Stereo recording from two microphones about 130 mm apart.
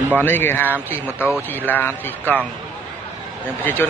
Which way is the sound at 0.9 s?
10° right (ahead or behind).